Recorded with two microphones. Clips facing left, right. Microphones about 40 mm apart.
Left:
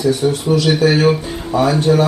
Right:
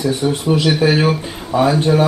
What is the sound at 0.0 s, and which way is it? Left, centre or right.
Speech, right.